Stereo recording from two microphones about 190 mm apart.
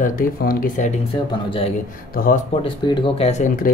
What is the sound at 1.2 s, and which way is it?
Speech, 25° left (ahead or behind).